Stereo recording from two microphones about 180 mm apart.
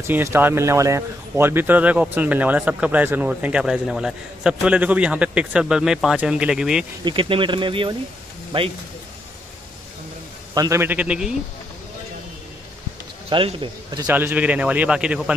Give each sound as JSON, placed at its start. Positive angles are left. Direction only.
{"t": 0.0, "sound": "speech", "side_deg": -15}
{"t": 7.1, "sound": "speech", "side_deg": -30}
{"t": 10.5, "sound": "speech", "side_deg": -20}
{"t": 13.3, "sound": "speech", "side_deg": -30}
{"t": 14.0, "sound": "speech", "side_deg": -10}